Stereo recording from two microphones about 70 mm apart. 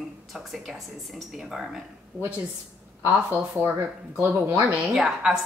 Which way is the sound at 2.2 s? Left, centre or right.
Centre.